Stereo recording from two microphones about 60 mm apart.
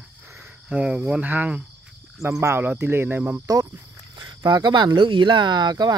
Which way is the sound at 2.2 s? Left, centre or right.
Right.